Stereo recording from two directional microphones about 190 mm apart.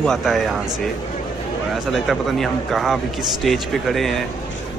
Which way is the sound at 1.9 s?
Centre (ahead or behind).